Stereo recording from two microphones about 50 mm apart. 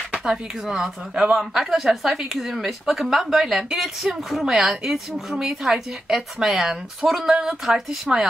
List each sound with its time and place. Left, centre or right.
0.1 s a woman's voice: centre